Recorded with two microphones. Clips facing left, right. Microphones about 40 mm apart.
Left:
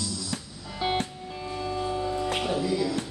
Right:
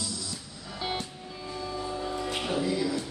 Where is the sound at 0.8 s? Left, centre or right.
Left.